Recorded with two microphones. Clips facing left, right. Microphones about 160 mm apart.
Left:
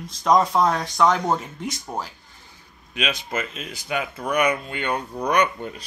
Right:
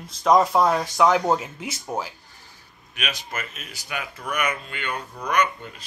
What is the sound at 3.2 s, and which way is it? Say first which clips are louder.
Speech: left 5 dB; 30° left (ahead or behind).